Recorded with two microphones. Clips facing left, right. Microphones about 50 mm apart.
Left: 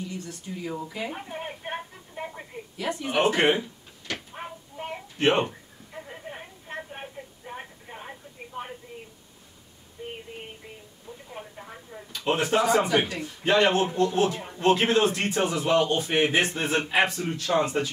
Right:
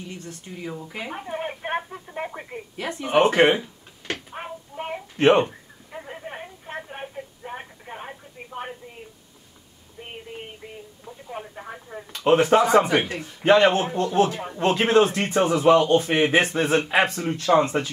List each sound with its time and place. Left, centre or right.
0.1 s a sound: right
0.9 s telephone: right
3.0 s speech: right
4.1 s a sound: right
11.3 s telephone: right
12.2 s speech: right